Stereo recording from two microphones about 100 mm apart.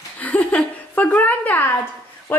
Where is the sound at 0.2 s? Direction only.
15° left (ahead or behind).